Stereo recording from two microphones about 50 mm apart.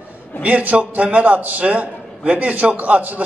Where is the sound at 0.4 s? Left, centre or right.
Right.